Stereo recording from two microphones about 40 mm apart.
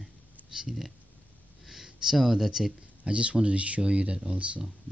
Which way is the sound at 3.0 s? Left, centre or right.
Right.